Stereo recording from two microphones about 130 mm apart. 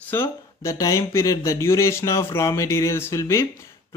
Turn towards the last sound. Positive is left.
turn(degrees=20)  # may be behind; listen again after turning